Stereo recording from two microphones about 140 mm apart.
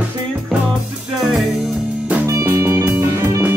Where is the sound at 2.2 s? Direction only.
20° right (ahead or behind).